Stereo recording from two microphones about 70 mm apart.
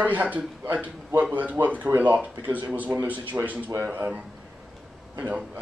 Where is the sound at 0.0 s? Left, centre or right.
Right.